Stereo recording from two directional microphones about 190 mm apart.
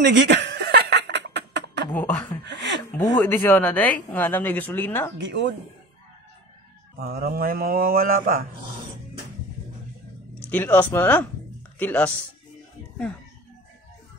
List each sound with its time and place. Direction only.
0.0 s snicker: 70° right (ahead or behind)
1.9 s speech: 10° left (ahead or behind)
2.4 s a sound: 70° right (ahead or behind)
3.2 s speech: 10° left (ahead or behind)
7.0 s speech: 55° right (ahead or behind)
10.5 s speech: 10° left (ahead or behind)